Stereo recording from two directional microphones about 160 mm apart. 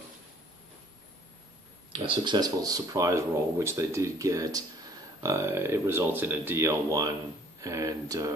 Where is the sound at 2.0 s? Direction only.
30° right (ahead or behind).